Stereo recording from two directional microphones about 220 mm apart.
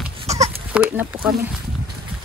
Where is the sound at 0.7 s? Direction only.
5° right (ahead or behind).